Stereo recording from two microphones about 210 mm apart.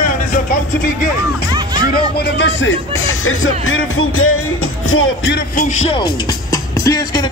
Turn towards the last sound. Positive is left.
turn(degrees=20)  # may be behind; listen again after turning